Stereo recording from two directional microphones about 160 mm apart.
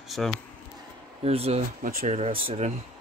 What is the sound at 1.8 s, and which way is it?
Speech, 65° right (ahead or behind).